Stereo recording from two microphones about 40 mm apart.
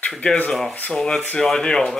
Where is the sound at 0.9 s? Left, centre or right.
Centre.